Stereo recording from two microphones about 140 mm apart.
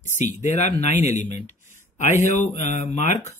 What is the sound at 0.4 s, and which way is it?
Speech, 55° left (ahead or behind).